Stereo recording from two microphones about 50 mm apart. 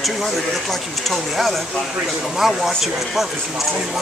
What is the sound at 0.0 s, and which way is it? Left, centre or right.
Speech, centre.